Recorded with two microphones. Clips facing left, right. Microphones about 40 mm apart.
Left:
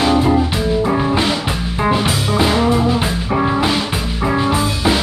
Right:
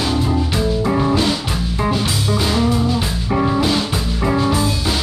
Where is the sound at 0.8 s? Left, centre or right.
Centre.